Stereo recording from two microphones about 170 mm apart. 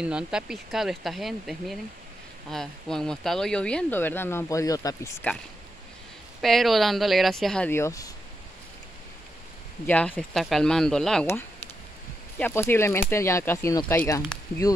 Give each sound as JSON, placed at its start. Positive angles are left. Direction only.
{"t": 0.0, "sound": "speech", "side_deg": -5}
{"t": 6.4, "sound": "speech", "side_deg": 0}
{"t": 9.8, "sound": "speech", "side_deg": 10}
{"t": 12.4, "sound": "speech", "side_deg": 10}